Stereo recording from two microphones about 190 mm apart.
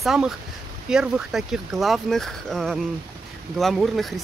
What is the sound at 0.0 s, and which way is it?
Speech, centre (ahead or behind).